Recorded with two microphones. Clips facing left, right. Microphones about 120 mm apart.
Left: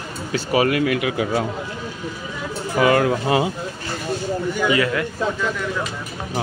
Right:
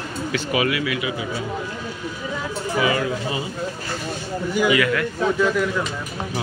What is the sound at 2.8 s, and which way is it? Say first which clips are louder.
Speech: left 6 dB; 55° left (ahead or behind).